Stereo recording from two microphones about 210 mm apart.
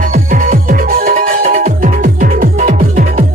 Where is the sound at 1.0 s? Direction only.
45° right (ahead or behind).